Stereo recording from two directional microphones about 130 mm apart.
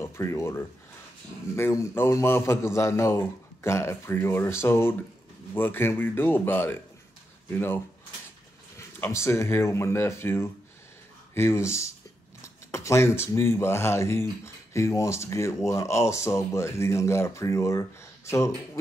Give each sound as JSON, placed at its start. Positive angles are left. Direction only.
{"t": 0.0, "sound": "speech", "side_deg": 20}